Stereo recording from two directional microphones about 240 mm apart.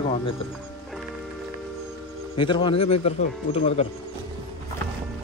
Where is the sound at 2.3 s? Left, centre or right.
Centre.